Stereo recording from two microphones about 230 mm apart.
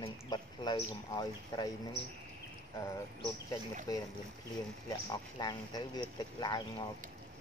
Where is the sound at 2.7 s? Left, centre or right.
Centre.